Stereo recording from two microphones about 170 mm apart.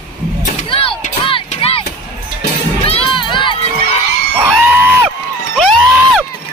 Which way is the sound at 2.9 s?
30° left (ahead or behind).